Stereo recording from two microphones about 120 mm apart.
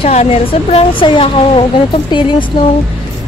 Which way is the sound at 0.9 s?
45° left (ahead or behind).